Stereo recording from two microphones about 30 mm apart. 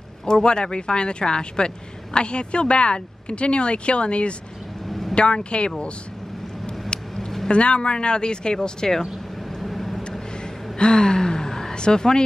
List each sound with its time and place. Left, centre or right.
0.2 s speech: left
4.8 s vehicle: centre
5.1 s speech: left
7.2 s a sound: centre
7.5 s speech: left; by 9.0 s centre
9.6 s vehicle: centre
10.8 s a sound: left
11.7 s speech: left